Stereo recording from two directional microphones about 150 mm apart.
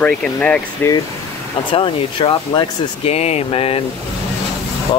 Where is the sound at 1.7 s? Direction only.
35° left (ahead or behind).